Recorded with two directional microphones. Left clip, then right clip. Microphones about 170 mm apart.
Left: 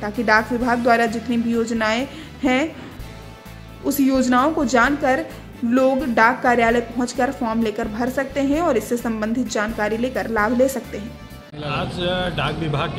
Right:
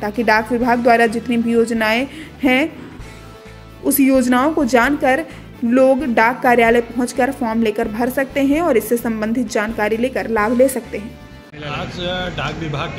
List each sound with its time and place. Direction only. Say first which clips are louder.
0.0 s a woman's voice: right 2 dB; 20° right (ahead or behind)
3.8 s a woman's voice: right 4 dB; 20° right (ahead or behind)
11.7 s a man's voice: even; 5° left (ahead or behind)